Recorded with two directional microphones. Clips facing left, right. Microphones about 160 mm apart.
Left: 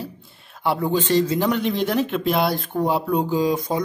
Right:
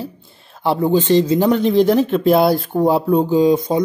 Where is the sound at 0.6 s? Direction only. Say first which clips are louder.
Right 6 dB; 30° right (ahead or behind).